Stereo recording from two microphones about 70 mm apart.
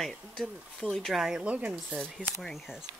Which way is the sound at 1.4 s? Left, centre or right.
Centre.